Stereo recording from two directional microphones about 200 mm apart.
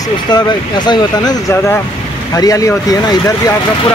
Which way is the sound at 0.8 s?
15° left (ahead or behind).